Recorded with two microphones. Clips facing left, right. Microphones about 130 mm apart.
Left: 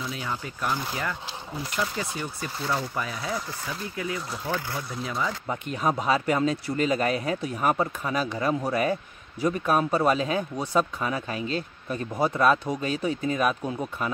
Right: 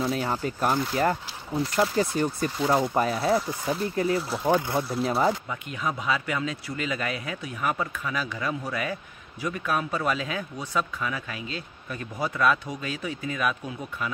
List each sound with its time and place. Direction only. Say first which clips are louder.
0.0 s speech: right 6 dB; 40° right (ahead or behind)
4.5 s speech: right 8 dB; 20° right (ahead or behind)
5.0 s speech: right 6 dB; 35° right (ahead or behind)
5.5 s speech: left 4 dB; 40° left (ahead or behind)